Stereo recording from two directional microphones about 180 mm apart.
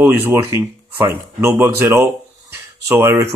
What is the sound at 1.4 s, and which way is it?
Speech, 15° right (ahead or behind).